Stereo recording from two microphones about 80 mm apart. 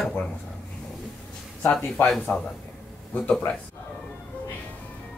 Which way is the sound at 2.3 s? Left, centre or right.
Centre.